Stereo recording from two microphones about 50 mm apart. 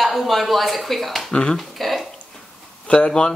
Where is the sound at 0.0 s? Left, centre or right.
Centre.